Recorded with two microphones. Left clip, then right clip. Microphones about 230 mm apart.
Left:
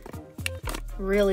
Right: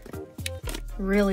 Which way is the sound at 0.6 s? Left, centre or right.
Centre.